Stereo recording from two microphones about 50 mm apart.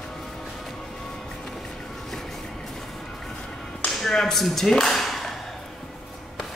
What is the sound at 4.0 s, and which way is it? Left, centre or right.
Speech, centre.